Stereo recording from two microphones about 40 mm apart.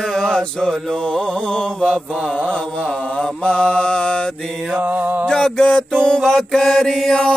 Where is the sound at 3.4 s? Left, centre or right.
Left.